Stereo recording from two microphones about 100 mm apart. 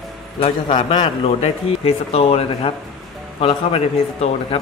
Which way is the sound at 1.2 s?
80° left.